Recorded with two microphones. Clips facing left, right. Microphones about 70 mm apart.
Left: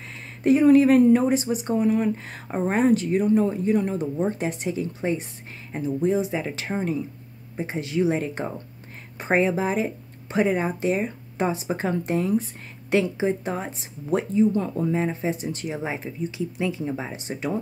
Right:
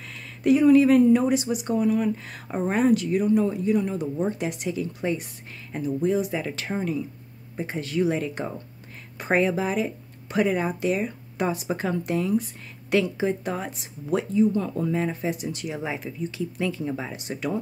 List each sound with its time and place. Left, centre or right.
0.4 s speech: left
0.7 s speech: left
1.2 s speech: left
9.2 s speech: left
14.7 s speech: left